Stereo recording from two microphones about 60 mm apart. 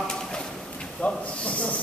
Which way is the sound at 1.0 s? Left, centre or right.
Left.